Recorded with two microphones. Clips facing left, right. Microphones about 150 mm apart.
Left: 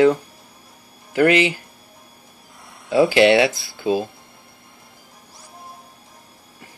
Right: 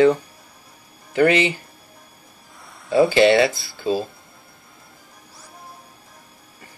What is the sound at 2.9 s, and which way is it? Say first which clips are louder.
Speech: even; 5° left (ahead or behind).